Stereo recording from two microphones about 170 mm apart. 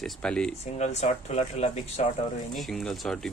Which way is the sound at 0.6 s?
40° left (ahead or behind).